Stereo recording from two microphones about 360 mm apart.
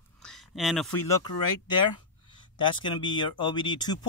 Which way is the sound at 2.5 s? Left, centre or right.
Centre.